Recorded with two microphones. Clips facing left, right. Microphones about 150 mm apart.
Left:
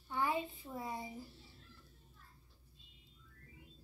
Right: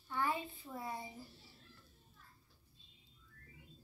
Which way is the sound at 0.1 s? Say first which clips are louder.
Left 2 dB; 20° left (ahead or behind).